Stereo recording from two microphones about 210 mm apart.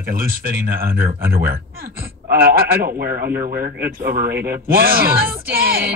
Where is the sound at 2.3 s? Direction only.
45° right (ahead or behind).